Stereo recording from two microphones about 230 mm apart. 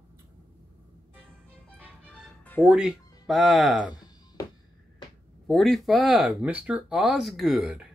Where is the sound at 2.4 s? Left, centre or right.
Centre.